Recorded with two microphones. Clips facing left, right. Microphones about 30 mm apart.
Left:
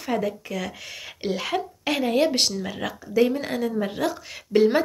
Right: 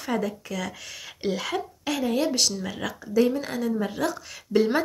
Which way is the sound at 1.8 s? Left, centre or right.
Left.